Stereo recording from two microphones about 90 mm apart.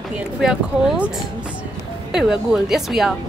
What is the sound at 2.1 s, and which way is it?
A woman's voice, 5° right (ahead or behind).